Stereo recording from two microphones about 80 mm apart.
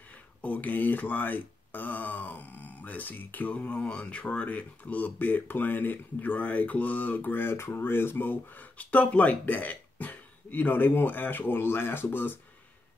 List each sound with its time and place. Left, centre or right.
0.4 s speech: centre